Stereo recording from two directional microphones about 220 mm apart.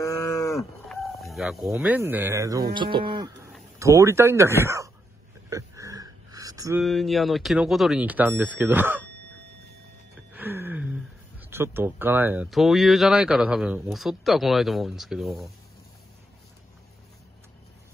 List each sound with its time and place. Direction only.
0.0 s cattle: 15° left (ahead or behind)
0.8 s chicken: centre (ahead or behind)
1.7 s speech: 10° right (ahead or behind)
5.5 s a sound: 15° right (ahead or behind)
6.8 s speech: centre (ahead or behind)
10.3 s music: 10° right (ahead or behind)
11.5 s speech: 10° right (ahead or behind)